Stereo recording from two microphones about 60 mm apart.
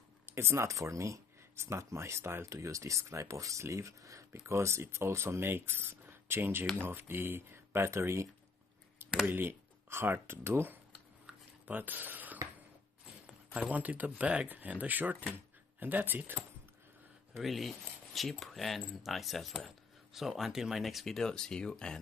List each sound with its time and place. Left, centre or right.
0.3 s speech: right
4.3 s speech: right
9.3 s speech: right
11.6 s speech: right
13.5 s speech: right
17.4 s speech: centre